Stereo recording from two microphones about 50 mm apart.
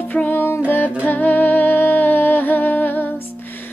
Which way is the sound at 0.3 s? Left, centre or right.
Left.